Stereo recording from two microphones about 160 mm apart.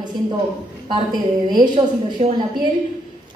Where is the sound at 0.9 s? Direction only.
25° right (ahead or behind).